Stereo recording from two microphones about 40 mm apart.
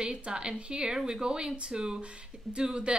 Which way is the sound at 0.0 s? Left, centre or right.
Right.